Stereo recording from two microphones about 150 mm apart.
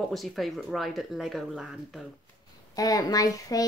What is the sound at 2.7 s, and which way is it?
Speech, 25° left (ahead or behind).